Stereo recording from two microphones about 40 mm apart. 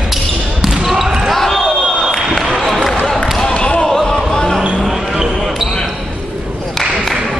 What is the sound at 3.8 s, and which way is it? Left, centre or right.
Basketball bounce, centre.